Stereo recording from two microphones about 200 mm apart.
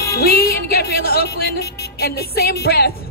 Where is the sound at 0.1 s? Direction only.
50° left (ahead or behind).